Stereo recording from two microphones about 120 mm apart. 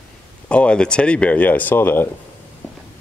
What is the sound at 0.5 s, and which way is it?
Speech, 10° left (ahead or behind).